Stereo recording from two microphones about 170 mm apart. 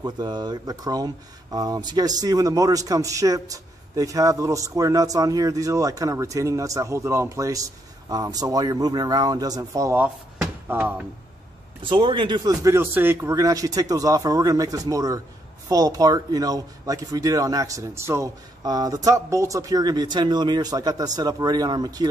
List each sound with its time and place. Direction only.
0.0 s speech: 25° right (ahead or behind); by 11.1 s 10° right (ahead or behind)
11.8 s speech: 30° right (ahead or behind)